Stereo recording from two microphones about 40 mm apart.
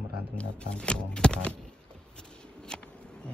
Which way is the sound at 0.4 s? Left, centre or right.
Left.